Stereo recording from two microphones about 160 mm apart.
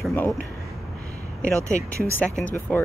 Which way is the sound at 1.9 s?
15° right (ahead or behind).